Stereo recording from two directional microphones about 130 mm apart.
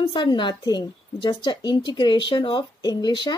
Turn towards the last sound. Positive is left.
turn(degrees=35)  # may be behind; listen again after turning